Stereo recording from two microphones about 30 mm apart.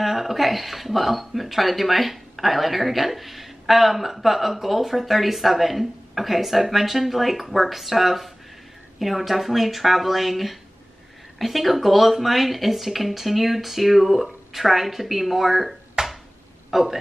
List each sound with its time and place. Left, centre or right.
0.0 s speech: centre
16.0 s a sound: right
16.7 s speech: centre